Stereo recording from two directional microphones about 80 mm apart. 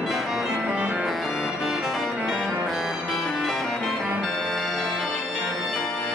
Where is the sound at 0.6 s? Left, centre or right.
Centre.